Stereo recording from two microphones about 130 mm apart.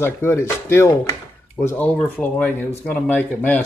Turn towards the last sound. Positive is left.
turn(degrees=15)  # may be behind; listen again after turning